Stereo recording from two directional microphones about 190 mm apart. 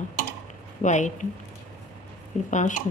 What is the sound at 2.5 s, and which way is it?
Speech, 40° left (ahead or behind).